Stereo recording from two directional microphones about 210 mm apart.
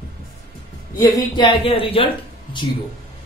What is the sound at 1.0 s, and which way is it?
A man's voice, 20° left (ahead or behind).